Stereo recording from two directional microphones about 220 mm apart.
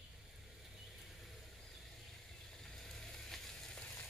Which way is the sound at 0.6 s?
Centre (ahead or behind).